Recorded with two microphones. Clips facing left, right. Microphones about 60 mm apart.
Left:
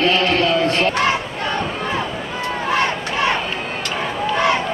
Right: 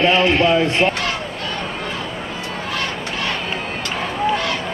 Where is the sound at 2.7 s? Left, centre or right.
Left.